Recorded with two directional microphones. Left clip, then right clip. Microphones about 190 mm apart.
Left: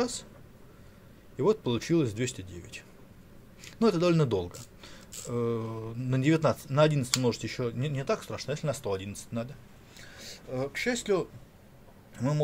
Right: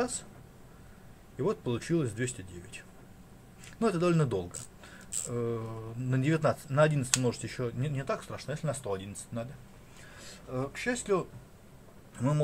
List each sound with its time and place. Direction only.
0.0 s speech: 15° left (ahead or behind)
1.4 s speech: 20° left (ahead or behind)
3.8 s speech: 20° left (ahead or behind)